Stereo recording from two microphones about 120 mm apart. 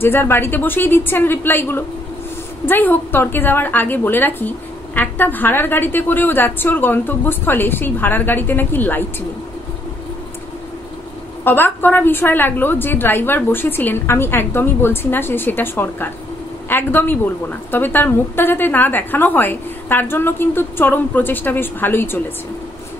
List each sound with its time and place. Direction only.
0.0 s a woman's voice: 20° left (ahead or behind)
11.4 s a woman's voice: 15° left (ahead or behind)